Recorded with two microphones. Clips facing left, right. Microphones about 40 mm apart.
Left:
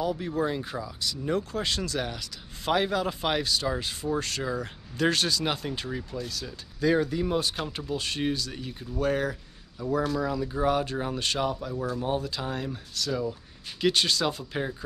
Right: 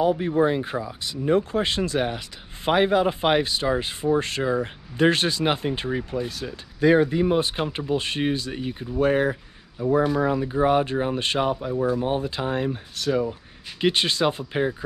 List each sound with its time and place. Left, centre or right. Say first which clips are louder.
0.0 s speech: right 8 dB; right